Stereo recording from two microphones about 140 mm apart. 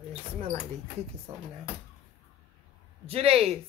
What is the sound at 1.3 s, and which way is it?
Speech, 35° right (ahead or behind).